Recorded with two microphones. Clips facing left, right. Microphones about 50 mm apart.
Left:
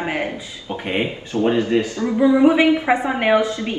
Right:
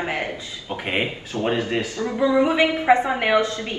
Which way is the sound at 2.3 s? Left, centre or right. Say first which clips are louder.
Left 4 dB; centre.